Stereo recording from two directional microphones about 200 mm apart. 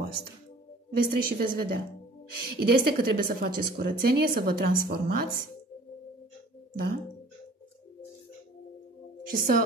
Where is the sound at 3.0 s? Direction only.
45° right (ahead or behind).